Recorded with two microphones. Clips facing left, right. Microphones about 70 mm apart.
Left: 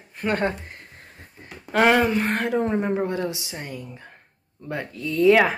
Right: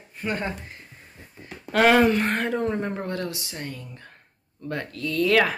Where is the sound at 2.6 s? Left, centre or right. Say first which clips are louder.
Left 4 dB; centre.